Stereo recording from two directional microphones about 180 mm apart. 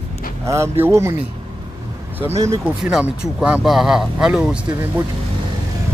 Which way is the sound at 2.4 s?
15° right (ahead or behind).